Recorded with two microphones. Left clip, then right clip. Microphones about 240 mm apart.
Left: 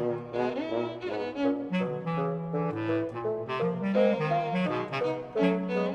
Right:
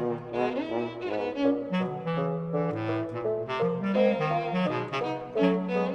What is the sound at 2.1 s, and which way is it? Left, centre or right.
Saxophone, left.